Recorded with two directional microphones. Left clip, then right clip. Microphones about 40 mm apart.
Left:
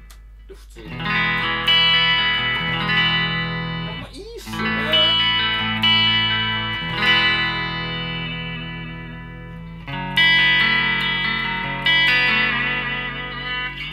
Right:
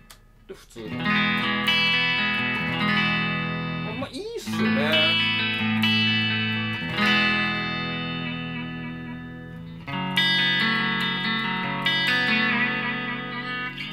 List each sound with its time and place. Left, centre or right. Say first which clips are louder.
0.9 s music: left 3 dB; left
9.8 s music: left 6 dB; left